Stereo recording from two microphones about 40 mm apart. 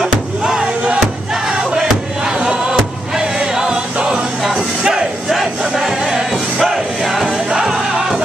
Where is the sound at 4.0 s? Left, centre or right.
Centre.